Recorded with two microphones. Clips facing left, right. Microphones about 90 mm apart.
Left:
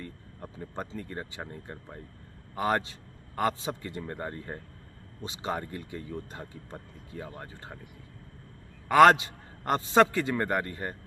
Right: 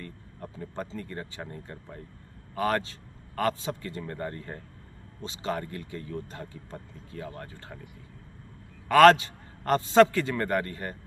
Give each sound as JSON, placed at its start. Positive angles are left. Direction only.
{"t": 0.7, "sound": "speech", "side_deg": 15}
{"t": 8.8, "sound": "speech", "side_deg": 15}